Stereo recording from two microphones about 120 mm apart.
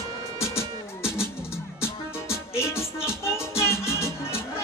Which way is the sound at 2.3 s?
20° left (ahead or behind).